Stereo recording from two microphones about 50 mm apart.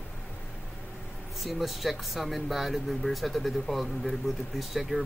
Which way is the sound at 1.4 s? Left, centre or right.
Centre.